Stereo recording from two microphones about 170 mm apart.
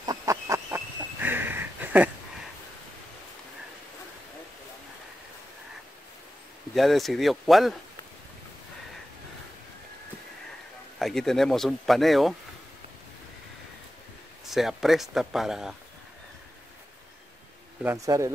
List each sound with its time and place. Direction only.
0.0 s a sound: 20° right (ahead or behind)
6.7 s speech: centre (ahead or behind)
11.0 s speech: centre (ahead or behind)
14.4 s speech: centre (ahead or behind)
17.8 s speech: 20° right (ahead or behind)